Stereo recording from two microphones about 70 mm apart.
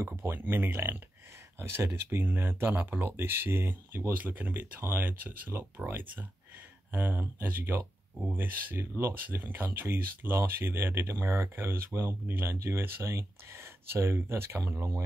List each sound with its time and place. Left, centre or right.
0.0 s speech: right
0.4 s speech: right